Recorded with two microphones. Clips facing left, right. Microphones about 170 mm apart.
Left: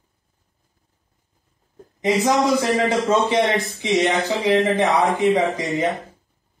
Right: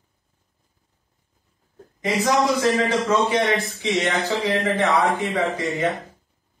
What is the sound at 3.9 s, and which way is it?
Speech, 20° left (ahead or behind).